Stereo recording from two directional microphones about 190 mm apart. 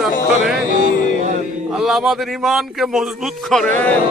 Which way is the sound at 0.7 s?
45° right (ahead or behind).